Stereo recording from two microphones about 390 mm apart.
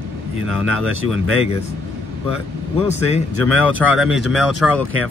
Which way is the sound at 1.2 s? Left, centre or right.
Right.